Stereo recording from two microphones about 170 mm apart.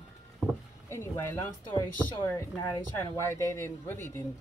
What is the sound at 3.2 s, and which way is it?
A woman's voice, 15° left (ahead or behind).